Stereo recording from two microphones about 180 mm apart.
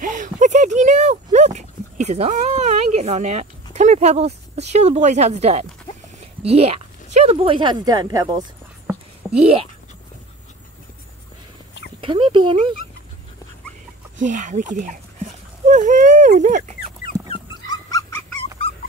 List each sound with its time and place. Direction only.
0.0 s dog: 45° right (ahead or behind)
3.7 s speech: 40° right (ahead or behind); by 8.5 s 20° right (ahead or behind)
9.4 s speech: 35° right (ahead or behind)
12.0 s speech: 30° right (ahead or behind)
14.1 s speech: 45° right (ahead or behind)
15.6 s dog: 45° right (ahead or behind)
17.3 s dog: 20° left (ahead or behind)